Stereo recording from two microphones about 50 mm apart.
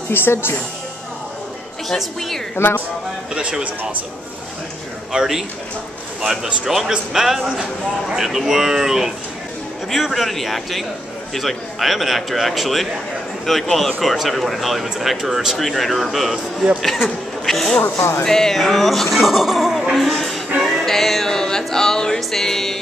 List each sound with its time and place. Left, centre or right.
0.1 s speech: left
1.9 s speech: centre
2.5 s speech: left
3.3 s speech: centre
5.1 s speech: centre
17.9 s speech: left
18.2 s a sound: centre